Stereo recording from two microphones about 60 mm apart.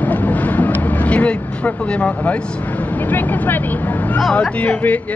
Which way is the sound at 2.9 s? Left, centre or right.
Left.